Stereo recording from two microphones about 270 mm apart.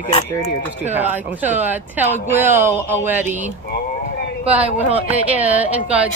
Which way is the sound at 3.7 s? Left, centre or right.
Left.